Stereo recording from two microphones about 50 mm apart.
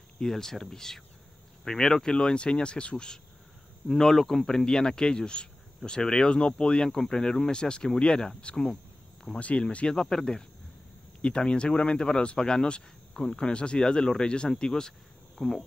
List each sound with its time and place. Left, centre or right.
0.2 s speech: centre
3.8 s speech: centre
9.4 s speech: left
9.9 s speech: centre